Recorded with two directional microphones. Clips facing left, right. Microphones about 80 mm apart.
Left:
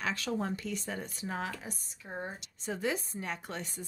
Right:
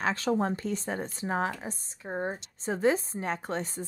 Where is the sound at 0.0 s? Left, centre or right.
Right.